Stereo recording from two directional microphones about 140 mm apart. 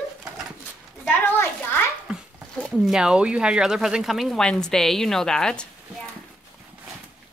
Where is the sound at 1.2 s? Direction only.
15° left (ahead or behind).